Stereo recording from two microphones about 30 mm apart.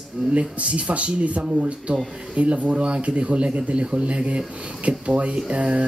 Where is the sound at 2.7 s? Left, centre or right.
Right.